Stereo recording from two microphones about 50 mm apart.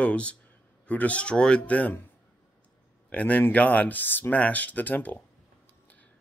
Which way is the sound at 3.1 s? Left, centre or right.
Left.